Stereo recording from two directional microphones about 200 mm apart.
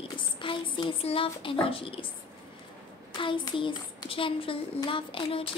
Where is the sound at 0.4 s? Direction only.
25° left (ahead or behind).